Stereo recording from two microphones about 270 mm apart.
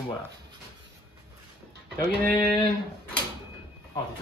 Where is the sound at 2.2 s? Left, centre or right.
Right.